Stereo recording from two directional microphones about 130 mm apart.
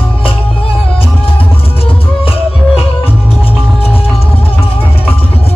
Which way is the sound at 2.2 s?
45° left (ahead or behind).